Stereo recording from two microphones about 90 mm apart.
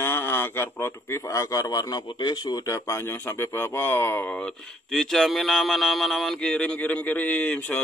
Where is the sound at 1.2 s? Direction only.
35° left (ahead or behind); by 4.6 s 15° left (ahead or behind).